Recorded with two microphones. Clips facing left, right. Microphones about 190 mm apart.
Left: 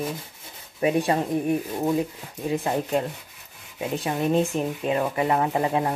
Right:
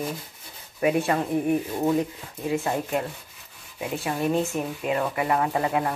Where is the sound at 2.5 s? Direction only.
20° left (ahead or behind).